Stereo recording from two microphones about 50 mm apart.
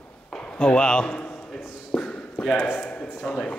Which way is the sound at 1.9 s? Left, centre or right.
Centre.